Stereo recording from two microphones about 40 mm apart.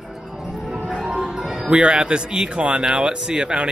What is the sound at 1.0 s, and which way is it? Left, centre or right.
Music, centre.